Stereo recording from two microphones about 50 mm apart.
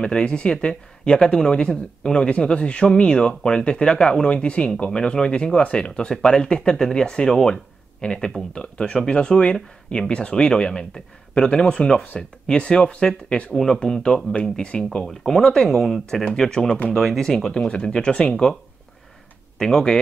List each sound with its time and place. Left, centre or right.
0.0 s speech: centre
16.9 s speech: centre
19.6 s speech: centre